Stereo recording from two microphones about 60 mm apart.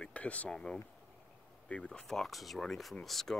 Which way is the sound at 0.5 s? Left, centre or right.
Centre.